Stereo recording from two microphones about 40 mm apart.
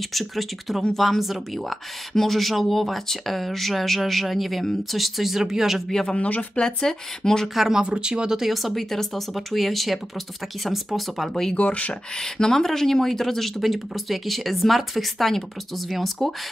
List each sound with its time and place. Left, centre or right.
0.1 s speech: centre
6.0 s speech: left
6.6 s speech: centre
7.5 s speech: centre
7.8 s speech: right
8.4 s speech: centre
11.5 s speech: left
11.9 s speech: centre